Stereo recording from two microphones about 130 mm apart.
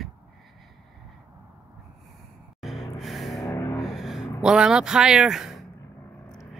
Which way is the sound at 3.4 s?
25° left (ahead or behind).